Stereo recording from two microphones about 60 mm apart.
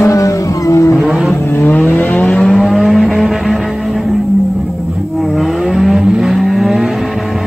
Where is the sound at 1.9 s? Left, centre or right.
Left.